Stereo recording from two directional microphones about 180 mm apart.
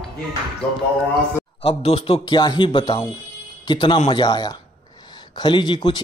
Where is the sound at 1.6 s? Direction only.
35° left (ahead or behind).